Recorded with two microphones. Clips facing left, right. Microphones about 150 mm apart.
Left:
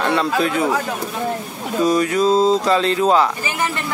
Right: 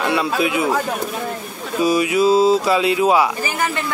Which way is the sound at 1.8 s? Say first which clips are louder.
Even; 10° right (ahead or behind).